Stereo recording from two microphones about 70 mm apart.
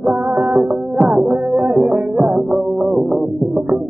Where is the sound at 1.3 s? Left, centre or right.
Right; by 3.6 s centre.